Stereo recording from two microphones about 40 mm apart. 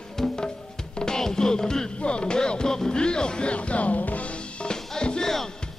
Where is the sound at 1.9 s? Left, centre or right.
Left.